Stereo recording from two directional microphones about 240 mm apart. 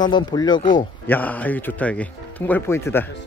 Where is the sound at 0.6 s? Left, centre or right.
Left.